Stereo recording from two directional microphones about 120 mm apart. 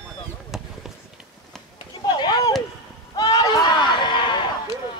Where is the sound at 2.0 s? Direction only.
35° left (ahead or behind).